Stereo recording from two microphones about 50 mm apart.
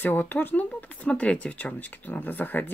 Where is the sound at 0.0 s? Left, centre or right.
Left.